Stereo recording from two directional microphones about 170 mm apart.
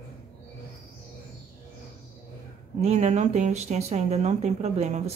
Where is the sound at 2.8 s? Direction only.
40° right (ahead or behind).